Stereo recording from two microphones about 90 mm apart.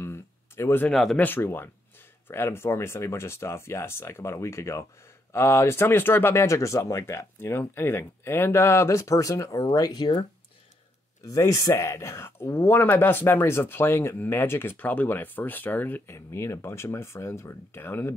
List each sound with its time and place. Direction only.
0.0 s a sound: 30° left (ahead or behind)
0.8 s speech: centre (ahead or behind)
1.1 s speech: 20° left (ahead or behind); by 10.2 s 50° left (ahead or behind)
11.2 s speech: 40° left (ahead or behind)